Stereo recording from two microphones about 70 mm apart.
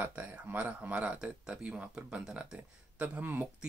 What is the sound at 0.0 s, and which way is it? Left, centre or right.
Speech, right.